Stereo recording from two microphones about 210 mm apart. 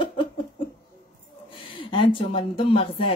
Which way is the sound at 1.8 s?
25° left (ahead or behind).